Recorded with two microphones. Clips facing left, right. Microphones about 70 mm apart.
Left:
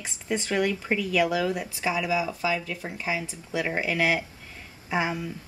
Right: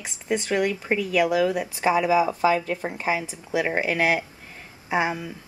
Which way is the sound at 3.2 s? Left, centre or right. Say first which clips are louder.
Right 4 dB; centre.